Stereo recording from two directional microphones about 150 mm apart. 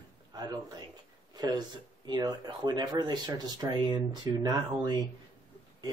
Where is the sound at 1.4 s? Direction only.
25° right (ahead or behind).